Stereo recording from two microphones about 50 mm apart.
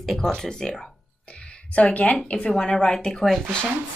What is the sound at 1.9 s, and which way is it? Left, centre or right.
Speech, left.